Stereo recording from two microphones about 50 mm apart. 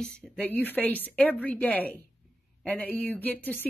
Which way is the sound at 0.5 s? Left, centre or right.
Left.